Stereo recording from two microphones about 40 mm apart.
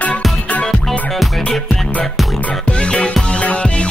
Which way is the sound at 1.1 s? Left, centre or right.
Centre.